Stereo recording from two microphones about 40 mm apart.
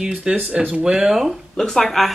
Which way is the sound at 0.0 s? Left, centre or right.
Right.